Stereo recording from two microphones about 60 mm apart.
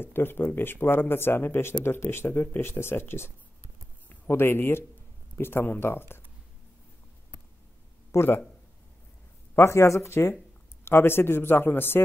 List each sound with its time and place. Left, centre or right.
0.0 s speech: left
2.6 s speech: left
8.1 s speech: left
9.6 s speech: left